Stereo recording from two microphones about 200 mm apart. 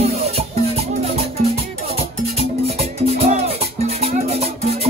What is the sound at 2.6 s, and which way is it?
Music, 30° right (ahead or behind).